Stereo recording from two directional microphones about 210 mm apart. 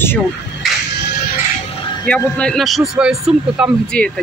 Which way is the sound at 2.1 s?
5° left (ahead or behind).